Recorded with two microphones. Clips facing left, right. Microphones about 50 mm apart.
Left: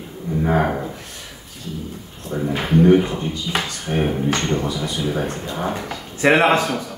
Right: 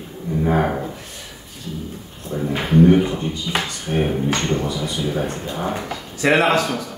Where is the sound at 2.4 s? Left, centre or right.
Centre.